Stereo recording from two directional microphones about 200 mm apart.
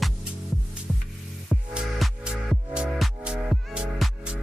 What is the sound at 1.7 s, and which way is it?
Music, centre (ahead or behind).